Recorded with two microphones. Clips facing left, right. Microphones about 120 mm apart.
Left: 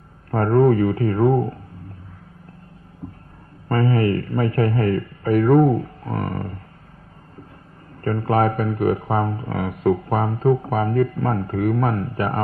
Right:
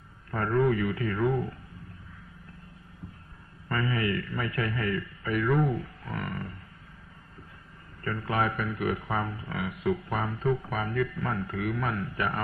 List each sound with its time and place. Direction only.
0.3 s speech: 45° left (ahead or behind)
3.0 s heart sounds: 50° left (ahead or behind)
3.6 s speech: 40° left (ahead or behind)
8.0 s speech: 40° left (ahead or behind)